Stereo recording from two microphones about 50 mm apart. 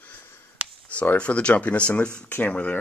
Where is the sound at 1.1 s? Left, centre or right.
Left.